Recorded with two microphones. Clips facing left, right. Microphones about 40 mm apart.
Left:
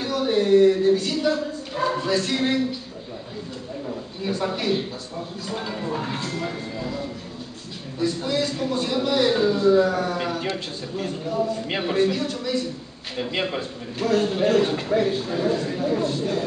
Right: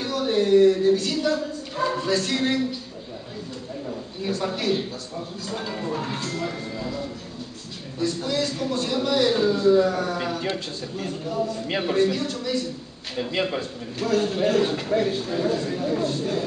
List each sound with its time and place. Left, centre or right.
0.0 s speech: centre
3.8 s a man's voice: centre